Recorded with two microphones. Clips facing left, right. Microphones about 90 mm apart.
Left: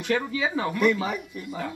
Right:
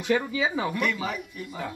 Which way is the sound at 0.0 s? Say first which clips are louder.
Right 1 dB; 5° right (ahead or behind).